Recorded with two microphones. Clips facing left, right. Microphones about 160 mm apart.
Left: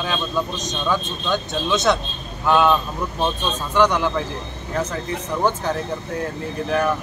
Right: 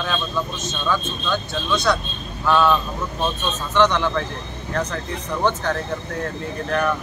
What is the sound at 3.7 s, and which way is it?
Speech, 10° left (ahead or behind).